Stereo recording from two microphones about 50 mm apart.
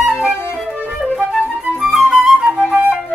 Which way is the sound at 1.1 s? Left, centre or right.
Centre.